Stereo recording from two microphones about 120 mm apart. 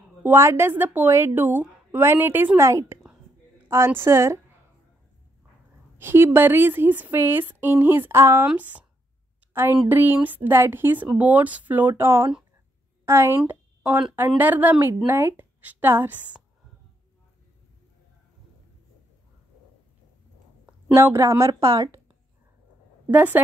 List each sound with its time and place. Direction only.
0.2 s a woman's voice: 20° right (ahead or behind)
5.9 s a woman's voice: 20° right (ahead or behind)
20.9 s a woman's voice: 20° right (ahead or behind)
23.1 s a woman's voice: 15° right (ahead or behind)